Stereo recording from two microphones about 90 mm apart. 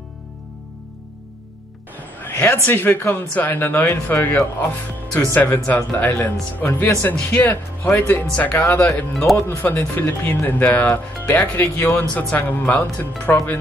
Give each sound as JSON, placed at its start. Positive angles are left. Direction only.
{"t": 2.2, "sound": "a man's voice", "side_deg": 25}